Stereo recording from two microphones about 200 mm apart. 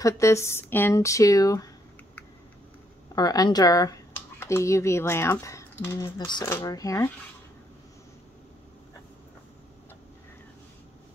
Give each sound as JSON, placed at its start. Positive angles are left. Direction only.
{"t": 0.0, "sound": "speech", "side_deg": 15}
{"t": 3.2, "sound": "speech", "side_deg": 20}